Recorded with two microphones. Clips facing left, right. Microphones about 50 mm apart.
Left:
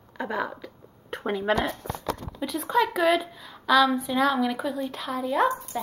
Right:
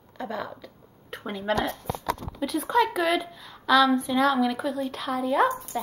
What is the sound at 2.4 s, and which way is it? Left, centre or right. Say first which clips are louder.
Speech: right 1 dB; centre.